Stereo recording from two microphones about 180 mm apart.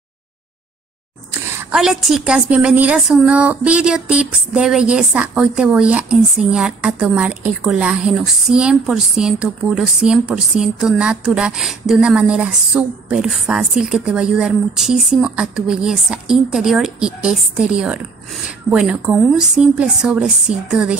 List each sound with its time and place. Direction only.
1.6 s a woman's voice: 5° right (ahead or behind)